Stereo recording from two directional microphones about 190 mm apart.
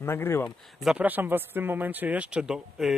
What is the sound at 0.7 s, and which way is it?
Speech, 5° right (ahead or behind).